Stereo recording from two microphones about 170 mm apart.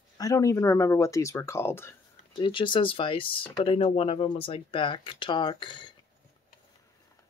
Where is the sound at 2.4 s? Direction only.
30° left (ahead or behind).